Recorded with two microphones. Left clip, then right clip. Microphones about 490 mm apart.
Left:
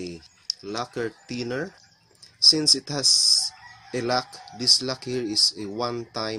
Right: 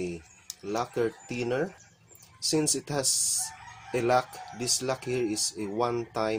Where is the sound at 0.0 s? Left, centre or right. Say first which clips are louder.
Right 1 dB; left.